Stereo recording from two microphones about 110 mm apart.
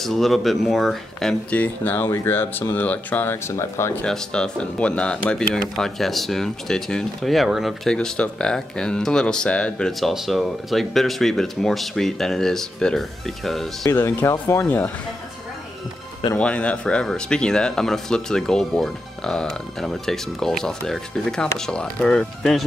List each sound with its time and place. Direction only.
0.0 s speech: centre (ahead or behind)
1.5 s speech: 15° left (ahead or behind)
4.0 s speech: 5° left (ahead or behind)
13.9 s speech: 25° left (ahead or behind)
16.3 s speech: 10° left (ahead or behind)